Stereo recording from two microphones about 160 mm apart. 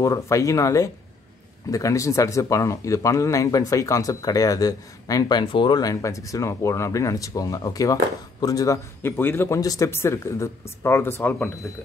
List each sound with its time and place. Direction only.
0.0 s speech: 20° left (ahead or behind)